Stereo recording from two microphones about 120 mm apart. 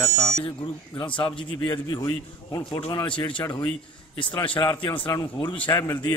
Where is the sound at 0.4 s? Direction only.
40° left (ahead or behind).